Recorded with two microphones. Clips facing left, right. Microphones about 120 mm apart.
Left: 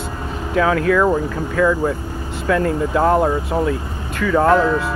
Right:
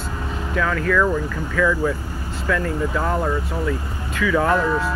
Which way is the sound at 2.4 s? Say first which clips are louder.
Left 5 dB; 50° left (ahead or behind).